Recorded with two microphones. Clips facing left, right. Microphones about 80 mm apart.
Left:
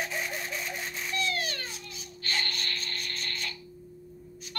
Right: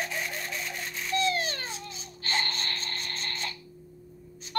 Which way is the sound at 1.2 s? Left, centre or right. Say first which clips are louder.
Right 4 dB; right.